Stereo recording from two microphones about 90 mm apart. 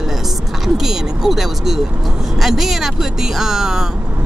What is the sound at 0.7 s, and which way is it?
Speech, 5° right (ahead or behind).